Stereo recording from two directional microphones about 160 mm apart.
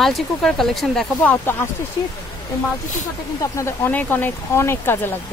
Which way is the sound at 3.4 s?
20° left (ahead or behind).